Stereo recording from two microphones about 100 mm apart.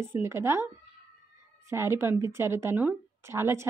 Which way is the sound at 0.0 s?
25° right (ahead or behind).